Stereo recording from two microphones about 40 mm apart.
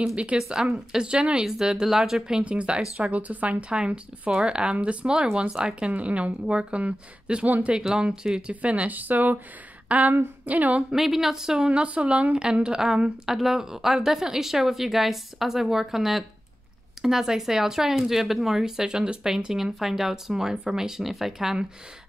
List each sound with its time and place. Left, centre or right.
0.0 s speech: right
2.4 s speech: right
3.1 s speech: right
8.9 s a woman's voice: right
11.0 s speech: centre
11.5 s speech: right
12.6 s speech: centre